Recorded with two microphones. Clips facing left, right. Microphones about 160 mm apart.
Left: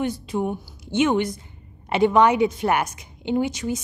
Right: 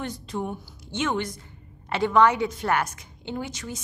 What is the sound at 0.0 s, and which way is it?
A woman's voice, 10° left (ahead or behind).